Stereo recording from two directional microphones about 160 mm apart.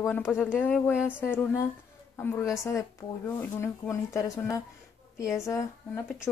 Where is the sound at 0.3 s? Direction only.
15° left (ahead or behind).